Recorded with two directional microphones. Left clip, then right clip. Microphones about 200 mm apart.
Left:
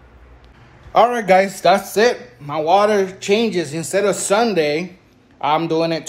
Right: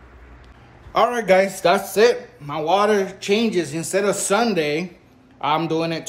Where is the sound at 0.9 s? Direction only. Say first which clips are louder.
Left 3 dB; 10° right (ahead or behind).